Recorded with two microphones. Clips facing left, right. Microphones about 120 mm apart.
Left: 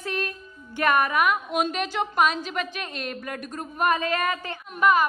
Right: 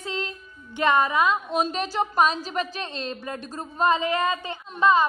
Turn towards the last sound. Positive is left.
turn(degrees=-25)  # may be behind; listen again after turning